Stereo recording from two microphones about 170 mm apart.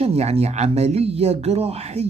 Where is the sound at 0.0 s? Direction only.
35° right (ahead or behind).